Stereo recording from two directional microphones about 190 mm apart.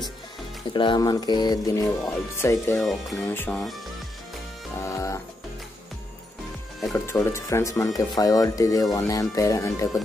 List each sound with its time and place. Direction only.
0.7 s speech: 25° left (ahead or behind); by 3.7 s 5° left (ahead or behind)
4.8 s music: 15° left (ahead or behind)
6.9 s speech: 15° left (ahead or behind)